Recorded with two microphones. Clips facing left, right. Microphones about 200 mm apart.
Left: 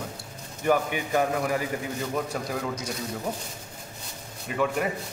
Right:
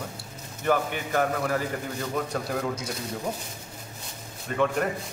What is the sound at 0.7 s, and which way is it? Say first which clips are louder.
Speech: left 1 dB; 15° left (ahead or behind).